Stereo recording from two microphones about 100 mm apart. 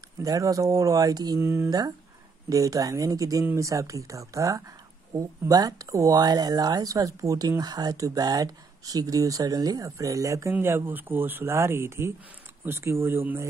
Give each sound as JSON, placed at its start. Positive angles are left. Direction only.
{"t": 0.2, "sound": "speech", "side_deg": -35}
{"t": 1.4, "sound": "speech", "side_deg": -25}
{"t": 1.7, "sound": "speech", "side_deg": -40}